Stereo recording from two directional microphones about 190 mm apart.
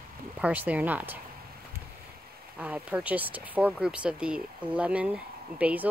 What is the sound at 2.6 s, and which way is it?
Speech, 5° right (ahead or behind).